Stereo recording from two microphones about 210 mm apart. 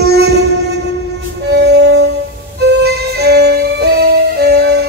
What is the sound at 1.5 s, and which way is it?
Music, 50° right (ahead or behind).